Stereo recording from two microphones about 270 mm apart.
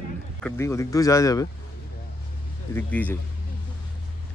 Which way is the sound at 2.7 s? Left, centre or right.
Centre.